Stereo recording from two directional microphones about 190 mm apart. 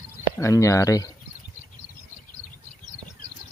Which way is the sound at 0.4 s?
15° left (ahead or behind).